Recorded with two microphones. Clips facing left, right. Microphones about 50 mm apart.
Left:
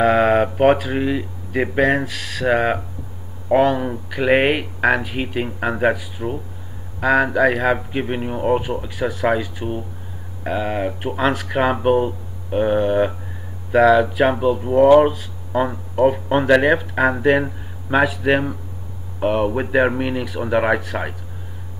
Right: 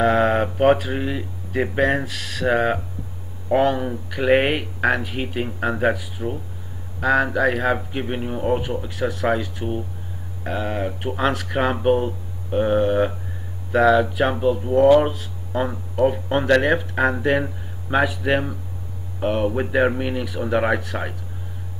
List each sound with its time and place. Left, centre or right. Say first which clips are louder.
0.0 s speech: left 3 dB; centre
8.0 s speech: left 3 dB; centre
8.8 s speech: left 2 dB; centre
11.4 s speech: left 1 dB; centre
14.6 s speech: left 3 dB; centre